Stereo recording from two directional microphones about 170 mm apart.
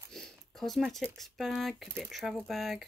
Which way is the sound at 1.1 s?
Centre (ahead or behind).